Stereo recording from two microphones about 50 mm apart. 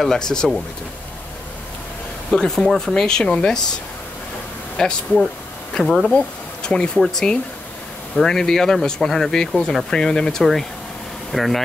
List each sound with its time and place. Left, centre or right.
0.0 s speech: centre
2.3 s speech: centre
4.8 s speech: centre
5.9 s speech: centre
6.1 s speech: centre